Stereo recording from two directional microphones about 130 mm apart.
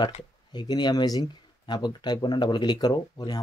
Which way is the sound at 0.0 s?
35° left (ahead or behind).